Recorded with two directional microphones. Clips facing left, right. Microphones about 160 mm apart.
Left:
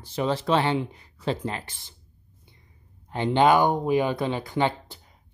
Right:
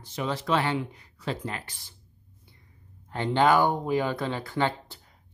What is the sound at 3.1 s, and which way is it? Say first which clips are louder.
Speech: left 3 dB; 20° left (ahead or behind).